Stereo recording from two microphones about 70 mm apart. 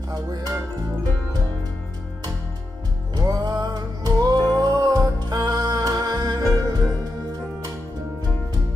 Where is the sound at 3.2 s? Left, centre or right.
Right.